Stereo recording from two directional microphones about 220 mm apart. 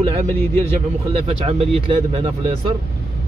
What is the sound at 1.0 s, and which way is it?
Speech, 25° right (ahead or behind).